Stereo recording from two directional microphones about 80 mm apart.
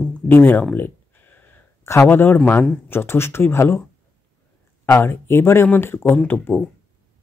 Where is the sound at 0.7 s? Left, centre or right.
Left.